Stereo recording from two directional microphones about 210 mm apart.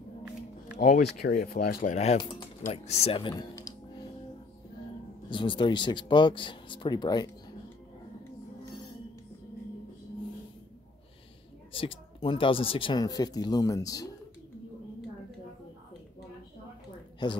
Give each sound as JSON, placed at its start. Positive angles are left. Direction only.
{"t": 0.7, "sound": "speech", "side_deg": 40}
{"t": 5.3, "sound": "speech", "side_deg": 25}
{"t": 11.7, "sound": "speech", "side_deg": 25}